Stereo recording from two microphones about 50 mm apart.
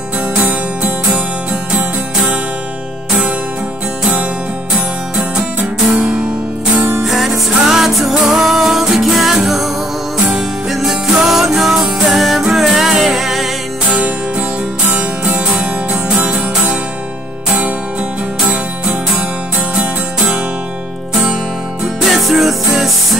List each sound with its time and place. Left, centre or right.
0.5 s music: right
1.5 s music: centre
5.9 s music: right
7.1 s music: centre
15.0 s music: right
18.5 s music: right
22.0 s music: centre